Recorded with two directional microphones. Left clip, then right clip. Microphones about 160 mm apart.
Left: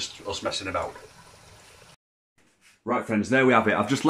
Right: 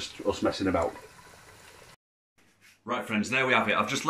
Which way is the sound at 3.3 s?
30° left (ahead or behind).